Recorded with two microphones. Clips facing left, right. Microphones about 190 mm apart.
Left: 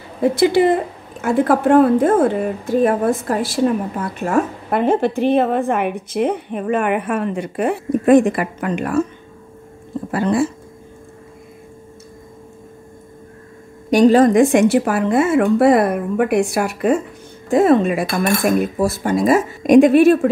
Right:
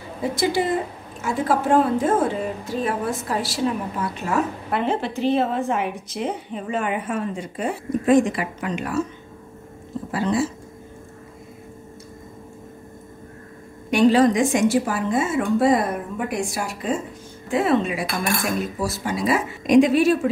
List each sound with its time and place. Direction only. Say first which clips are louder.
0.2 s speech: left 8 dB; 60° left (ahead or behind)
10.1 s speech: left 5 dB; 55° left (ahead or behind)
13.8 s speech: left 5 dB; 40° left (ahead or behind); by 17.0 s 65° left (ahead or behind)
17.5 s speech: left 7 dB; 45° left (ahead or behind)